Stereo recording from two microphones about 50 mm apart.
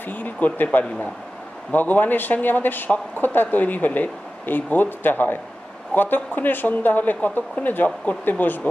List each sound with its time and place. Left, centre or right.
0.0 s speech: left
0.8 s a man's voice: left
1.7 s speech: left